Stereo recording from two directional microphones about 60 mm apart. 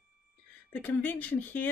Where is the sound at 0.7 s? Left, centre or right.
Left.